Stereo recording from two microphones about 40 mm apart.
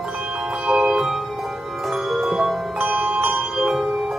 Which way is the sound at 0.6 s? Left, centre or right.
Centre.